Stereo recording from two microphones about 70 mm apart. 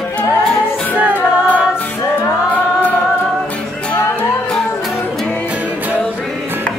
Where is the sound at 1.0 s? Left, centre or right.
Right.